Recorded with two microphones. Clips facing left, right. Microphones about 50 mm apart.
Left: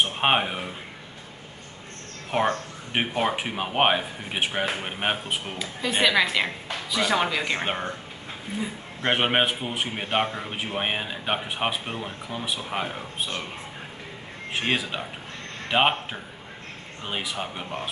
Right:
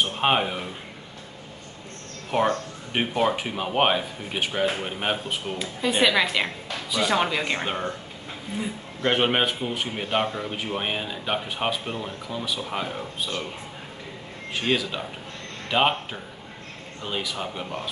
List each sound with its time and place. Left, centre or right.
0.1 s speech: centre
2.3 s speech: centre
5.6 s speech: centre
7.6 s speech: left
9.0 s speech: centre
14.5 s speech: left